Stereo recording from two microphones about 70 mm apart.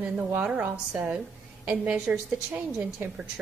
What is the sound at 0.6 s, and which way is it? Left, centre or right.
A woman's voice, right.